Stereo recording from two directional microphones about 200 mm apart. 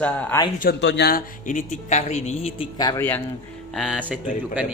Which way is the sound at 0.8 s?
60° left (ahead or behind).